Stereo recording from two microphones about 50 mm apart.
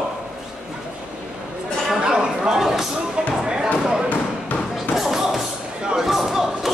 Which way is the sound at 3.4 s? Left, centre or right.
Centre.